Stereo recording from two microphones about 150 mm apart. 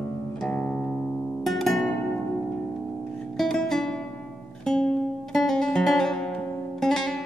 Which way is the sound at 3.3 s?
Centre (ahead or behind).